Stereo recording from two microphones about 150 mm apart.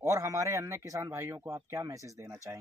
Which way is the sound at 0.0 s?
20° right (ahead or behind).